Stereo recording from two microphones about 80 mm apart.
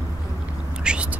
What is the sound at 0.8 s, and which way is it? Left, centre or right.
Cat, centre.